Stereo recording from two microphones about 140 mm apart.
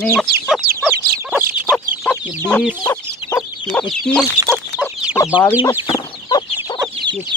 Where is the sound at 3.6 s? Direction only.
5° left (ahead or behind).